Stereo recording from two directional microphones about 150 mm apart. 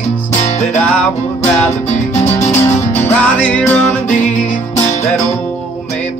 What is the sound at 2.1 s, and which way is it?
Music, 20° left (ahead or behind).